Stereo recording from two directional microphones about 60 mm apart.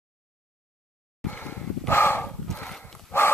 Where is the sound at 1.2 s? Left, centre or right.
Centre.